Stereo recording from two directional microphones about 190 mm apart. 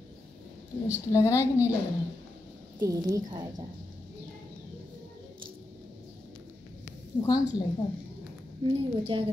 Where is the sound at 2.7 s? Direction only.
20° right (ahead or behind).